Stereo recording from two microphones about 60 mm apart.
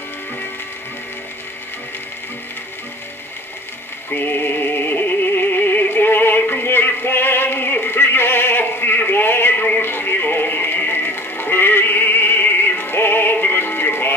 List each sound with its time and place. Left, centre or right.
4.1 s music: left